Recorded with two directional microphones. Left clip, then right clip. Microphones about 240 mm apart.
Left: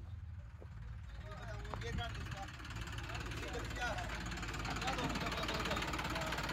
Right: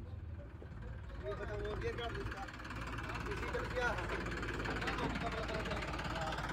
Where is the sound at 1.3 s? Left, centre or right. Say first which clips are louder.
Right 6 dB; right.